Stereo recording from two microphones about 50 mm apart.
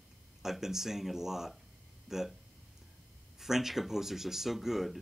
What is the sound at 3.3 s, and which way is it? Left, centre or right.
Speech, centre.